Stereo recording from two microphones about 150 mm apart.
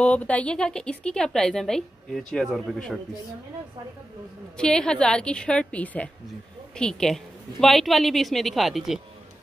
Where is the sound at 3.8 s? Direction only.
35° right (ahead or behind).